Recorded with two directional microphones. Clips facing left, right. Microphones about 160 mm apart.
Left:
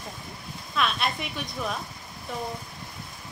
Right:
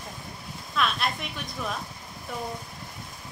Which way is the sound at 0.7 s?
Centre (ahead or behind).